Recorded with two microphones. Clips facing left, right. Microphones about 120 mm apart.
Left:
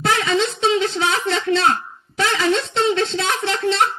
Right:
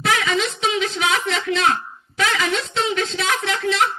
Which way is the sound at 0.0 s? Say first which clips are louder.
Left 2 dB; 30° left (ahead or behind).